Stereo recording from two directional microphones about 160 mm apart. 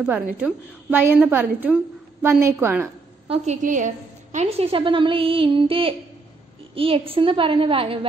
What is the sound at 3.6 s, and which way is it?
A woman's voice, 50° right (ahead or behind).